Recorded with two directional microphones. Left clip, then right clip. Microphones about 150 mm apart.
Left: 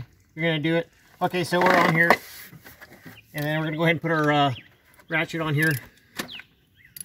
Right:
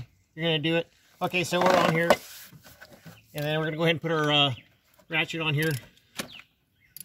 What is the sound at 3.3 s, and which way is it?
Speech, 30° right (ahead or behind).